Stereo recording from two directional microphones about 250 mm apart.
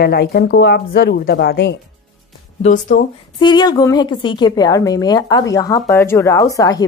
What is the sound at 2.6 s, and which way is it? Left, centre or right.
Speech, left.